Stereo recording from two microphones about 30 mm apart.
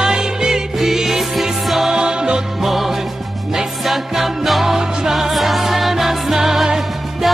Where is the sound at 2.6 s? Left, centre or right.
Centre.